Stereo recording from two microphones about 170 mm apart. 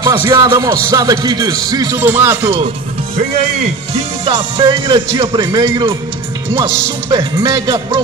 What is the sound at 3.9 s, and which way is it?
Speech, 30° right (ahead or behind).